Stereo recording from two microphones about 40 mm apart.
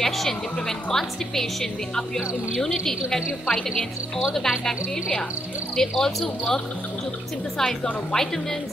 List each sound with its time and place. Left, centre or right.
0.0 s a woman's voice: centre